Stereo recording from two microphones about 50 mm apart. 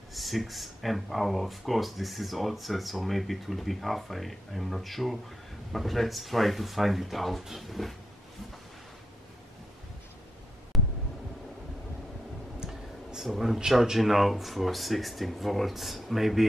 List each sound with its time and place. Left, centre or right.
0.1 s speech: centre
10.7 s a sound: centre
13.1 s a man's voice: centre